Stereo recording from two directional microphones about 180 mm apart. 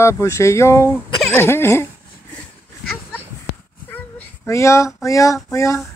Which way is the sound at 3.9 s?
15° left (ahead or behind).